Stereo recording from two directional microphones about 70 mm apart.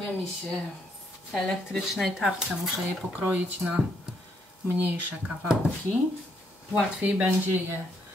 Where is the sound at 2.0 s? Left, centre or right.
Centre.